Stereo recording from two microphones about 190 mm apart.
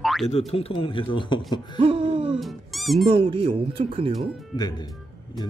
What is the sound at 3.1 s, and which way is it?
Speech, 30° right (ahead or behind).